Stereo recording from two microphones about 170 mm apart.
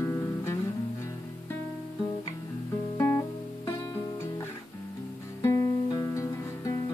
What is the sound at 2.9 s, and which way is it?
Music, 15° left (ahead or behind).